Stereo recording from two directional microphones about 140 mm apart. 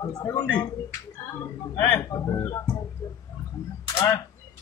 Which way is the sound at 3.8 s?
30° left (ahead or behind).